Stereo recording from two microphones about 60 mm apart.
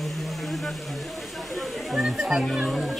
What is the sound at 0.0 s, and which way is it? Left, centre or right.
Speech, centre.